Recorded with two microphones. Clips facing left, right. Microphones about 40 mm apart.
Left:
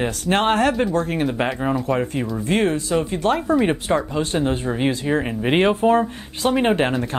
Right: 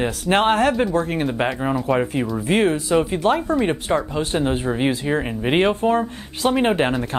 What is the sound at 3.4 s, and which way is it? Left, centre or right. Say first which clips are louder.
Speech: left 2 dB; centre.